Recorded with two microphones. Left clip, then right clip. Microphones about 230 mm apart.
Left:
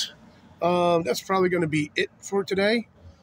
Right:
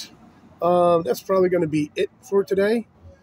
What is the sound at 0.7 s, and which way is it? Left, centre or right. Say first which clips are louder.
Speech: right 5 dB; centre.